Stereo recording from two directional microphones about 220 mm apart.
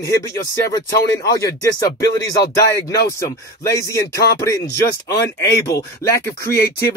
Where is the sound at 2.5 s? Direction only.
15° left (ahead or behind).